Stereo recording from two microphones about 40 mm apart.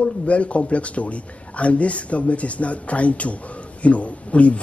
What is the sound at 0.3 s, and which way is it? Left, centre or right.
Speech, left.